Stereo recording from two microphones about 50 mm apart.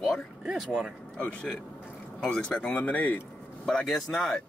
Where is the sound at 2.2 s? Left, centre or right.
Left.